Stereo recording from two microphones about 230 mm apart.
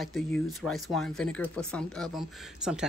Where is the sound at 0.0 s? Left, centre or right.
Centre.